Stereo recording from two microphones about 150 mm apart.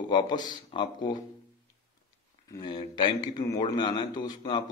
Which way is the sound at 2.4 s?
25° left (ahead or behind).